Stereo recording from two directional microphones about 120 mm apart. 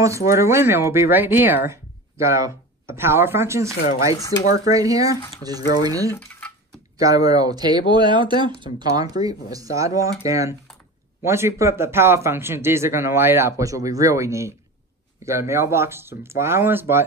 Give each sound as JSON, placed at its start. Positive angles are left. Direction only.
{"t": 0.0, "sound": "speech", "side_deg": -25}